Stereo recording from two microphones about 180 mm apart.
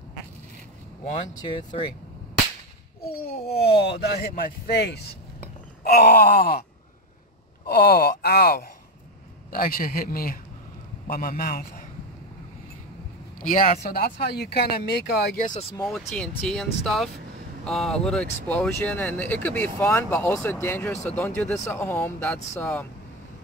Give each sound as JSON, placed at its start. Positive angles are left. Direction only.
{"t": 3.2, "sound": "speech", "side_deg": 60}
{"t": 7.6, "sound": "a man's voice", "side_deg": 60}
{"t": 13.4, "sound": "a man's voice", "side_deg": 45}
{"t": 15.8, "sound": "speech", "side_deg": 0}